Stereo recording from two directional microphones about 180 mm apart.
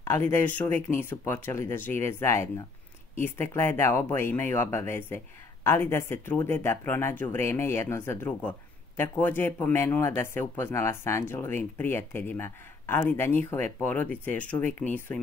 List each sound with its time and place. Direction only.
0.0 s a man's voice: 15° left (ahead or behind)